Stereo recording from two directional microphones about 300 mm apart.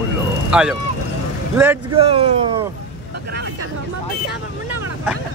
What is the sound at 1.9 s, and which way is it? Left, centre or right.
Speech, centre.